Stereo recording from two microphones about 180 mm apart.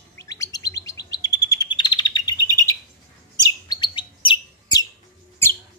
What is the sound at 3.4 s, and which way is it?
Chirp, 25° left (ahead or behind).